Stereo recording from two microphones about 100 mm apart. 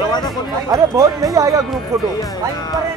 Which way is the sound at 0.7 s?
35° right (ahead or behind).